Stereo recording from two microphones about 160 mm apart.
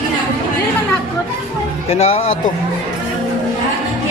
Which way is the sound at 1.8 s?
40° left (ahead or behind).